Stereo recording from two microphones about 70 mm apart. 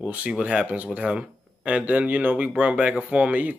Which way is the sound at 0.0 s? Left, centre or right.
Centre.